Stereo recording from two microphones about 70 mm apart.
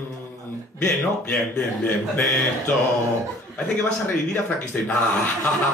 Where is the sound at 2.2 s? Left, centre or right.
Centre.